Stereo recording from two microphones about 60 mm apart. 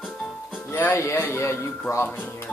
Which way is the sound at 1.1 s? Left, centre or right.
Left.